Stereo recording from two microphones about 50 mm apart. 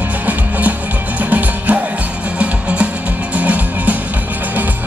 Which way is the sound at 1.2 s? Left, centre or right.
Right.